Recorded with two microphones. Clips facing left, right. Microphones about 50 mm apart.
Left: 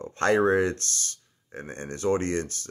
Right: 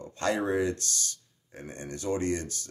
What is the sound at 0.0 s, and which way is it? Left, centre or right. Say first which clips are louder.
Speech: left 7 dB; left.